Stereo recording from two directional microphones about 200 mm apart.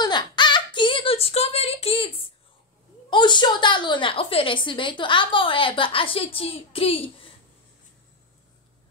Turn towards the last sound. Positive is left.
turn(degrees=30)  # may be behind; listen again after turning